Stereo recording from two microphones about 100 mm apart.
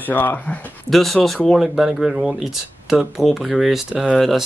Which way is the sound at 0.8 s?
Centre (ahead or behind).